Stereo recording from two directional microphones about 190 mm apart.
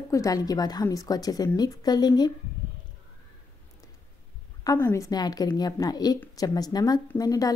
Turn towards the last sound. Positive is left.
turn(degrees=20)  # may be behind; listen again after turning